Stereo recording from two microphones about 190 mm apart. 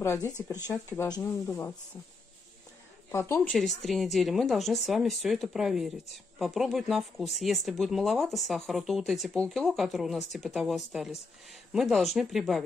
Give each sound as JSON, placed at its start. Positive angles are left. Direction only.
{"t": 0.6, "sound": "speech", "side_deg": -10}
{"t": 0.9, "sound": "speech", "side_deg": 20}
{"t": 3.1, "sound": "speech", "side_deg": 15}